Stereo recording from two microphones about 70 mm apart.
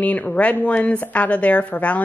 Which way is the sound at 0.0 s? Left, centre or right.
Left.